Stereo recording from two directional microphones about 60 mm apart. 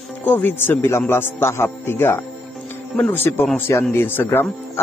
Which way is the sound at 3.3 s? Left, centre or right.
Left.